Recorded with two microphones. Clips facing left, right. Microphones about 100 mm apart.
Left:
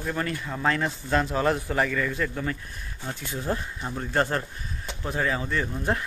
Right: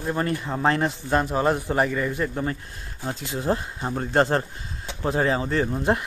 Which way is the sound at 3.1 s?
20° right (ahead or behind).